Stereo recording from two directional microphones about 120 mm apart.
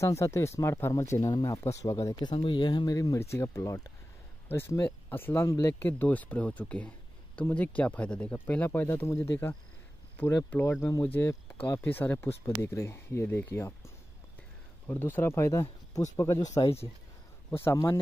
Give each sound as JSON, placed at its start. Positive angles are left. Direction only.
{"t": 0.0, "sound": "speech", "side_deg": 25}
{"t": 2.3, "sound": "speech", "side_deg": 45}
{"t": 5.8, "sound": "speech", "side_deg": 15}
{"t": 17.5, "sound": "speech", "side_deg": 20}